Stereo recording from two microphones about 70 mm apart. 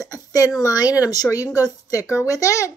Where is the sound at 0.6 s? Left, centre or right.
Left.